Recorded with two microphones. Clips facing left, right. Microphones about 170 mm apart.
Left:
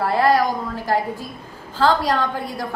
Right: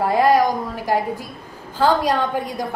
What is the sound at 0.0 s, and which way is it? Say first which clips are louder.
A woman's voice: right 2 dB; 15° right (ahead or behind).